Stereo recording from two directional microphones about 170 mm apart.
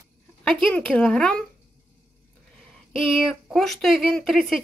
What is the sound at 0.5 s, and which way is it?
Speech, 5° left (ahead or behind).